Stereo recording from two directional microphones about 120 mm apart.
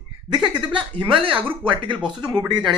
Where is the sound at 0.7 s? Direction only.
45° right (ahead or behind).